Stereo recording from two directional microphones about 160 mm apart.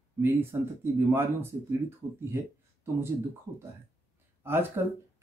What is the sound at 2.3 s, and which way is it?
Speech, 15° right (ahead or behind).